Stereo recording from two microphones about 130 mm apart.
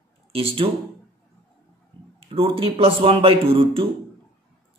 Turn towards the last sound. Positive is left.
turn(degrees=-45)  # may be behind; listen again after turning